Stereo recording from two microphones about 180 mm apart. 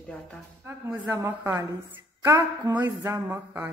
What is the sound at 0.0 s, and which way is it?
Speech, 5° left (ahead or behind).